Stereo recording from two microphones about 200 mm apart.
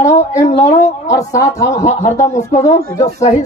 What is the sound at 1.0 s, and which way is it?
Speech, 15° left (ahead or behind).